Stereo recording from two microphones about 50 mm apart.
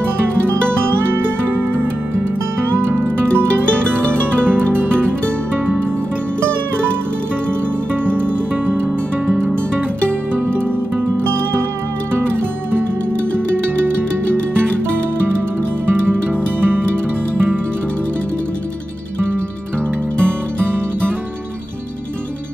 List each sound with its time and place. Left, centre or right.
1.1 s music: right
2.9 s music: right
15.9 s music: right